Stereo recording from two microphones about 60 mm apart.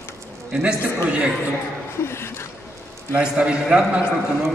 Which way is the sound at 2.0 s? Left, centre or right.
Left.